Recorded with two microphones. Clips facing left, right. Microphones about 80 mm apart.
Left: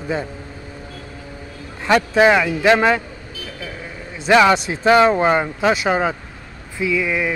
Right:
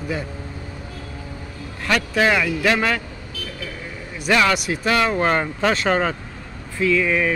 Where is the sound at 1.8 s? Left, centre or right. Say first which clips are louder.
Left 5 dB; left.